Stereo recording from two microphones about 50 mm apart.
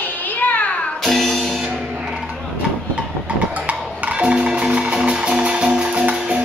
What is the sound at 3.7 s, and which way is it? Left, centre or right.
Music, right.